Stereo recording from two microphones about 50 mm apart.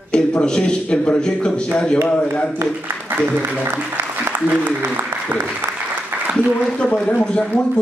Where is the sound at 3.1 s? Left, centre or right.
Right.